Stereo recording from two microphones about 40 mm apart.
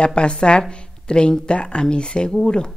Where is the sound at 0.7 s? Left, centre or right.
Left.